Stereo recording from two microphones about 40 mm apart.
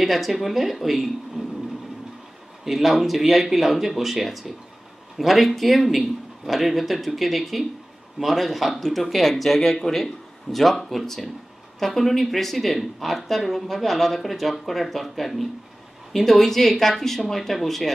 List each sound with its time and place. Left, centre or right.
0.0 s speech: centre
1.4 s a sound: centre
2.6 s speech: centre